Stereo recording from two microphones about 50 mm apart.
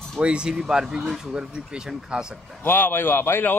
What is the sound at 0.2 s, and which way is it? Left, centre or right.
Speech, centre.